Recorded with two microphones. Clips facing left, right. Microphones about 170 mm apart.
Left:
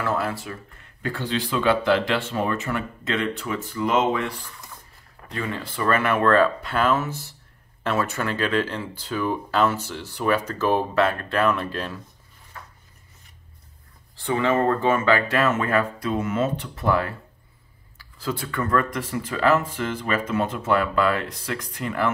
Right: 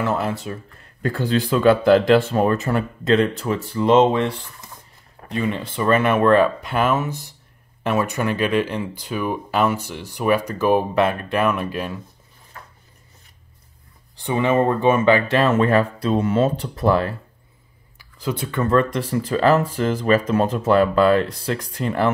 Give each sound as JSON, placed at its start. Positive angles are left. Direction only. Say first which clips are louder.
{"t": 0.0, "sound": "speech", "louder": "right 3 dB", "side_deg": -20}
{"t": 1.0, "sound": "speech", "louder": "right 6 dB", "side_deg": -45}
{"t": 14.1, "sound": "speech", "louder": "right 3 dB", "side_deg": -20}
{"t": 17.9, "sound": "speech", "louder": "right 3 dB", "side_deg": -20}